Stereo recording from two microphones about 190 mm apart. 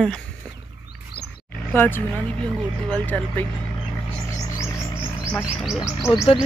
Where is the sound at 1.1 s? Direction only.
55° left (ahead or behind).